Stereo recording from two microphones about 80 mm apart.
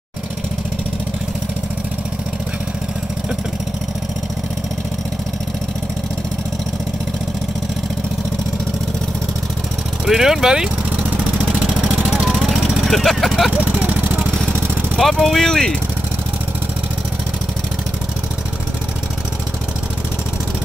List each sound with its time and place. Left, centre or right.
10.0 s speech: centre
11.4 s vehicle: centre
13.5 s speech: right
15.0 s speech: centre